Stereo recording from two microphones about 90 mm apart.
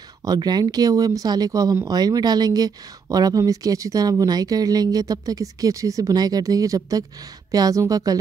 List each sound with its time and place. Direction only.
0.2 s speech: 45° right (ahead or behind)